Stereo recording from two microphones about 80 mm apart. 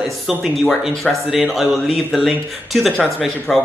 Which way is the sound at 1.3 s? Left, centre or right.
Centre.